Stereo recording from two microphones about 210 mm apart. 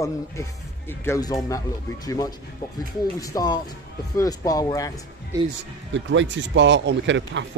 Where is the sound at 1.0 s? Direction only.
15° left (ahead or behind).